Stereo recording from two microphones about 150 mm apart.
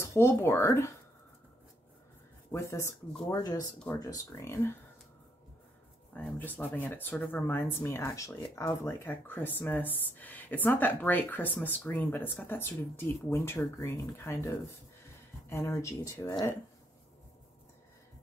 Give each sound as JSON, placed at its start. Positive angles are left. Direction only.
{"t": 0.0, "sound": "speech", "side_deg": 15}
{"t": 2.5, "sound": "speech", "side_deg": 20}
{"t": 6.1, "sound": "speech", "side_deg": 10}